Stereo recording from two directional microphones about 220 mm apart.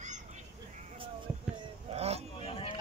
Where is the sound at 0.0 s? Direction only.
35° right (ahead or behind).